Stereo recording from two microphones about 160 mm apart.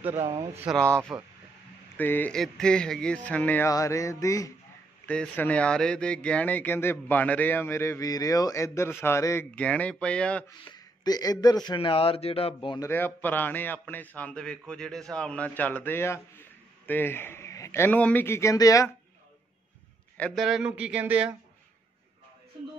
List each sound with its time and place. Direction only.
0.7 s a man's voice: 5° left (ahead or behind)
3.7 s music: 20° left (ahead or behind)
5.0 s a man's voice: 10° left (ahead or behind)
10.6 s speech: 25° left (ahead or behind)
12.5 s music: 25° left (ahead or behind)
12.9 s a man's voice: 10° left (ahead or behind)
20.2 s speech: centre (ahead or behind)